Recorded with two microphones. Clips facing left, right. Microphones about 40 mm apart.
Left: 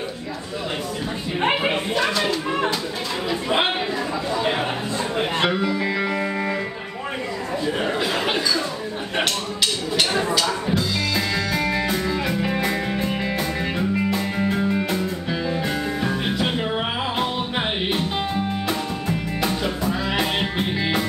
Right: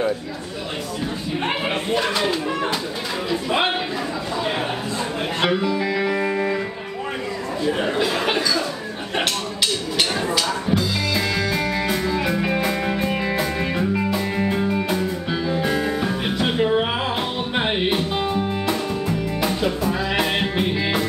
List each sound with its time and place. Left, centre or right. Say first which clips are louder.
1.4 s a sound: left 4 dB; centre
3.3 s music: even; centre
5.5 s music: right 1 dB; centre
10.2 s music: even; centre
12.3 s music: right 1 dB; centre